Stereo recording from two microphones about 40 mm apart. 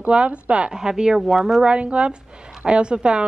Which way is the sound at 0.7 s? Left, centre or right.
Centre.